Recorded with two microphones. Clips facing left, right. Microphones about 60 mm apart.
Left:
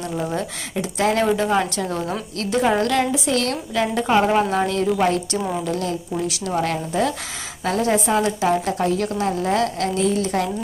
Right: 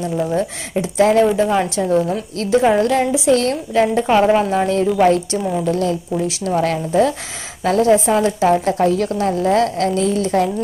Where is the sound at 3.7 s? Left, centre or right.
Right.